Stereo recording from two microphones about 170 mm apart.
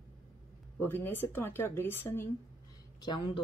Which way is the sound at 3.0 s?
30° left (ahead or behind).